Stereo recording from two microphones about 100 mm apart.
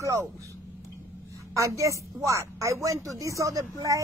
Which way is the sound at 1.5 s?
30° right (ahead or behind).